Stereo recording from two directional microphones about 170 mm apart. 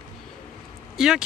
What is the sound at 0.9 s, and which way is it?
Speech, 5° right (ahead or behind).